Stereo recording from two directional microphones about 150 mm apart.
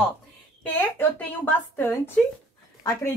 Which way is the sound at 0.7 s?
10° left (ahead or behind).